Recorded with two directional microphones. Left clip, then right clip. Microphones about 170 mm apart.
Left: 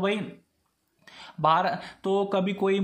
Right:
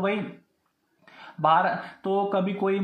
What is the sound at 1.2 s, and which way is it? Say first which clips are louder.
Speech: right 2 dB; 25° left (ahead or behind).